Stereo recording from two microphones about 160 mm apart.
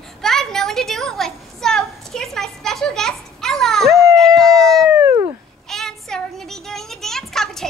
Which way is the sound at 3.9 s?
20° right (ahead or behind).